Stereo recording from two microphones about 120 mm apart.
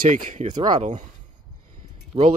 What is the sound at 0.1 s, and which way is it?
Speech, 90° right.